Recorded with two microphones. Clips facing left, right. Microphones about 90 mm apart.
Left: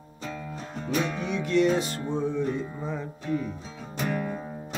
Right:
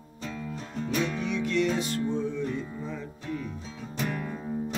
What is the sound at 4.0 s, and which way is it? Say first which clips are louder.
Music: left 3 dB; 10° left (ahead or behind).